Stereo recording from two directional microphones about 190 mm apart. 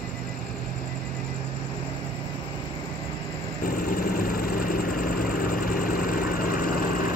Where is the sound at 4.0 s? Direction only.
50° left (ahead or behind).